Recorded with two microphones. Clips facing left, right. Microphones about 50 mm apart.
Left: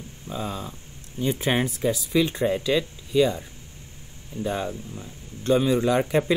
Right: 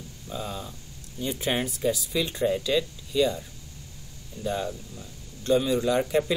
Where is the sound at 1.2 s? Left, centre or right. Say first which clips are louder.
Left 4 dB; left.